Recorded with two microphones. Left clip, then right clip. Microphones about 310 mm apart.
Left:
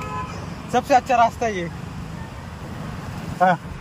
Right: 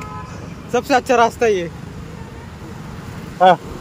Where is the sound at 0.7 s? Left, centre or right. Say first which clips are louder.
Right 2 dB; centre.